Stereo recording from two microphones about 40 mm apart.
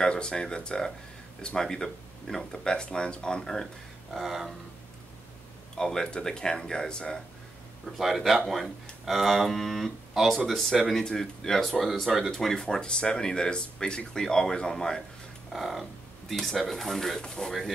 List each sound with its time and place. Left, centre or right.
0.0 s speech: left
4.1 s speech: centre
5.8 s speech: centre
8.0 s speech: centre
11.1 s speech: centre
15.5 s speech: centre